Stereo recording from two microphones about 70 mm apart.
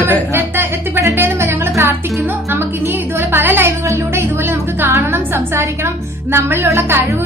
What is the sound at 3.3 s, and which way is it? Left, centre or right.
Music, right.